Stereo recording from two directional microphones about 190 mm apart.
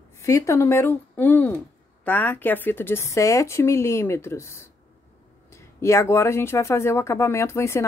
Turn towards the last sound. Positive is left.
turn(degrees=15)  # may be behind; listen again after turning